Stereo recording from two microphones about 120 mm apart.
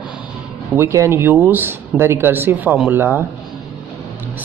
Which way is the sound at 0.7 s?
25° right (ahead or behind).